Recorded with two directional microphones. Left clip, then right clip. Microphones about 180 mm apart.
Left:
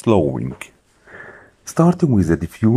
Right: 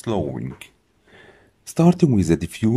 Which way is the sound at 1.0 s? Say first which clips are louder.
Left 11 dB; 15° right (ahead or behind).